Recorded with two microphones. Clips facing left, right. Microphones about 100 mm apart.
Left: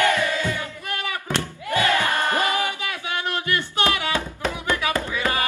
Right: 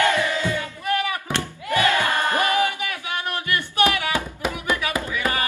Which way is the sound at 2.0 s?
20° right (ahead or behind).